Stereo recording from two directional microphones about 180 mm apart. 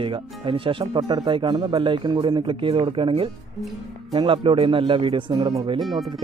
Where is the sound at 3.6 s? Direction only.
Centre (ahead or behind).